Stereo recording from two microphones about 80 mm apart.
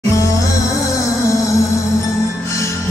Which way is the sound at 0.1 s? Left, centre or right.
Left.